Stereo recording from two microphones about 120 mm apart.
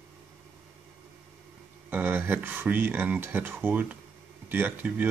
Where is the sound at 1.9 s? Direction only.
15° right (ahead or behind).